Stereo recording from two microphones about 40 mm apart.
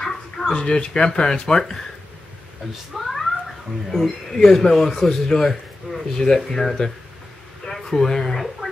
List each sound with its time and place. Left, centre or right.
0.0 s speech: centre
2.9 s cat: centre
3.9 s speech: centre